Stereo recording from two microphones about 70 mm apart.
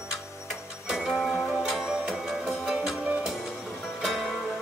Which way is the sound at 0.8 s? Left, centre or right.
Centre.